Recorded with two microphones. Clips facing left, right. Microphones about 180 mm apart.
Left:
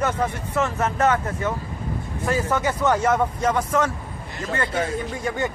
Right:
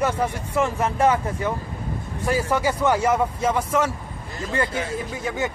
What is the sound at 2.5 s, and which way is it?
Speech, 10° right (ahead or behind).